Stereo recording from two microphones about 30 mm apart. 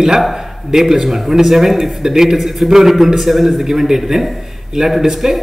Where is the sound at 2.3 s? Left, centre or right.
Centre.